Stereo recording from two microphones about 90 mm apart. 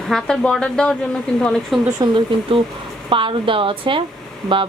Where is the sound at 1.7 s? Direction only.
Centre (ahead or behind).